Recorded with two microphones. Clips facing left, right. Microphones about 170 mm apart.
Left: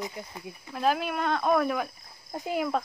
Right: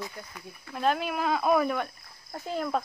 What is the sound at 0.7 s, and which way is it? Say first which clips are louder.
Speech: even; centre (ahead or behind).